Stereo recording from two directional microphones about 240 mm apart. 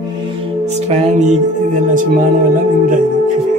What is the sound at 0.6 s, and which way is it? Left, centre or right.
Speech, right.